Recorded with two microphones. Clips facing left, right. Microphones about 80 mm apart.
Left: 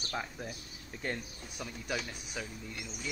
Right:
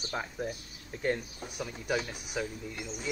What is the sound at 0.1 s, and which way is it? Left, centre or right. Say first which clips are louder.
Speech: right 3 dB; centre.